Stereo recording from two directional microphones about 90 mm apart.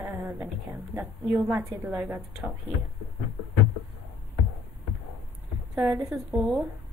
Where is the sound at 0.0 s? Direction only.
35° right (ahead or behind).